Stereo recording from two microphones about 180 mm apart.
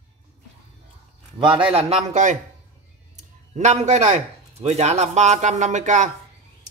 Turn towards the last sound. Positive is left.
turn(degrees=-40)  # may be behind; listen again after turning